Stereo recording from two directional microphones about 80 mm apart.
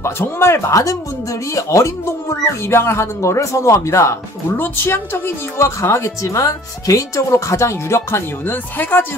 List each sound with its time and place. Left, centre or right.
0.0 s speech: left
4.6 s speech: left